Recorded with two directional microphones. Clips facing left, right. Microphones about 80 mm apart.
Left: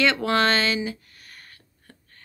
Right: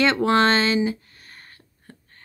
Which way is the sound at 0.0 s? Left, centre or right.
Right.